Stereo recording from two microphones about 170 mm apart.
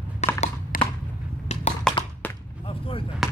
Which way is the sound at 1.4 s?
40° left (ahead or behind).